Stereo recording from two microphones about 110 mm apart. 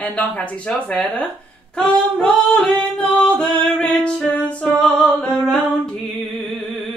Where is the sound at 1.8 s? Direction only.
10° left (ahead or behind).